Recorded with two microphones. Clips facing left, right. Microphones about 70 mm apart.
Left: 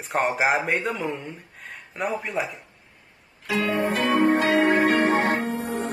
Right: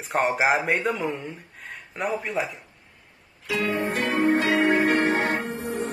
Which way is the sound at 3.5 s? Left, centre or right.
Left.